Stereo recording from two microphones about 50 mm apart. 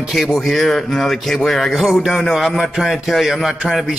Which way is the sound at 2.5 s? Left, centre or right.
Centre.